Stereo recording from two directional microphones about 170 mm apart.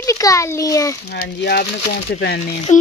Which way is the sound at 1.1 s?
70° left (ahead or behind).